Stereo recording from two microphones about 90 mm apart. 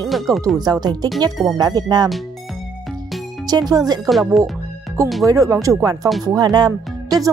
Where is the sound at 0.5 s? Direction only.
50° right (ahead or behind).